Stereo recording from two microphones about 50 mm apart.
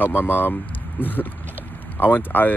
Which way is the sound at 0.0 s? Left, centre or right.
Left.